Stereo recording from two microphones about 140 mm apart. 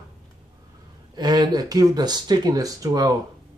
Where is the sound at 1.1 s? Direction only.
30° right (ahead or behind).